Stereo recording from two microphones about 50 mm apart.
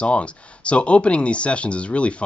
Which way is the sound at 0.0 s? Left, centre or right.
Left.